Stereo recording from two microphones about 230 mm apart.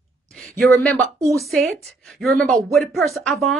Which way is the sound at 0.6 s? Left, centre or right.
Centre.